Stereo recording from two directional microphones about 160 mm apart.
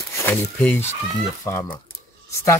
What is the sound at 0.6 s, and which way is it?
Speech, 10° left (ahead or behind).